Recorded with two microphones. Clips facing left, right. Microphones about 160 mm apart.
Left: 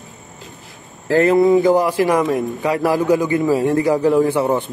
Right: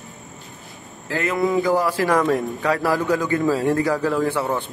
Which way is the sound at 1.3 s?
25° left (ahead or behind).